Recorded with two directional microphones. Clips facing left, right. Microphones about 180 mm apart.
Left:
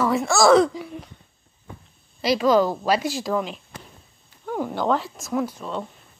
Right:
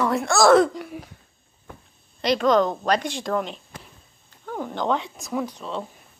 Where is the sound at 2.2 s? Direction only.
5° left (ahead or behind).